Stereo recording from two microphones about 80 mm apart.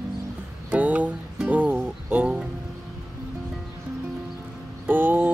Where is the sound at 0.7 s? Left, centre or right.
Centre.